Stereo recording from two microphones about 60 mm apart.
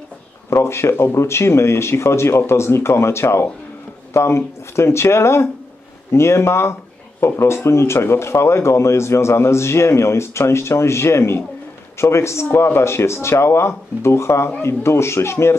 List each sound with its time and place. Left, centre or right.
0.5 s speech: left